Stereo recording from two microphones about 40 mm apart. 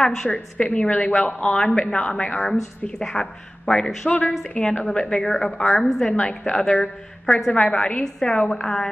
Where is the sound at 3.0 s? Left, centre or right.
Centre.